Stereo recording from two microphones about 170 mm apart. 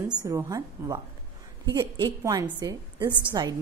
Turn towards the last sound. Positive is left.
turn(degrees=-25)  # may be behind; listen again after turning